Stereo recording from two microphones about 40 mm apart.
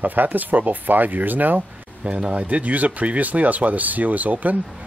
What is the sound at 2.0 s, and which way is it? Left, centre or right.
Speech, right.